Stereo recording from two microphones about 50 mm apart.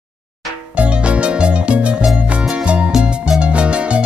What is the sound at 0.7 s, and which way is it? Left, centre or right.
Music, right.